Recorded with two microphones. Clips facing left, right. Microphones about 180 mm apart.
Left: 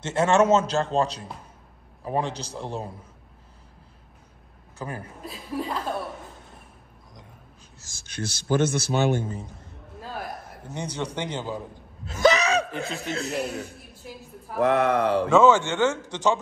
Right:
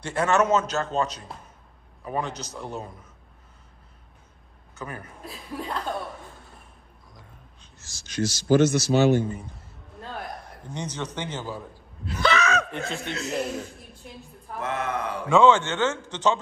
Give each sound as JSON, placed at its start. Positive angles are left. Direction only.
{"t": 0.0, "sound": "a man's voice", "side_deg": 25}
{"t": 4.7, "sound": "a man's voice", "side_deg": 30}
{"t": 5.2, "sound": "speech", "side_deg": 0}
{"t": 7.9, "sound": "a man's voice", "side_deg": 55}
{"t": 9.9, "sound": "a sound", "side_deg": 0}
{"t": 12.2, "sound": "gasp", "side_deg": 40}
{"t": 12.7, "sound": "speech", "side_deg": 0}
{"t": 13.4, "sound": "speech", "side_deg": 65}
{"t": 15.2, "sound": "a man's voice", "side_deg": 5}